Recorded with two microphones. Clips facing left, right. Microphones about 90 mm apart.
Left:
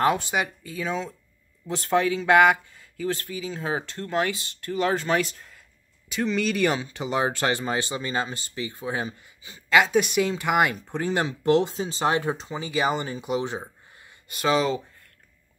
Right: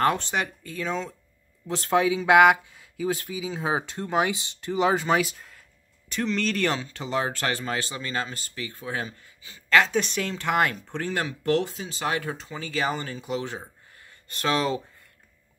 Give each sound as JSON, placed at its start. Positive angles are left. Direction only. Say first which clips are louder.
{"t": 0.0, "sound": "speech", "louder": "left 1 dB", "side_deg": 10}
{"t": 6.0, "sound": "speech", "louder": "left 2 dB", "side_deg": 5}
{"t": 14.3, "sound": "speech", "louder": "left 2 dB", "side_deg": 5}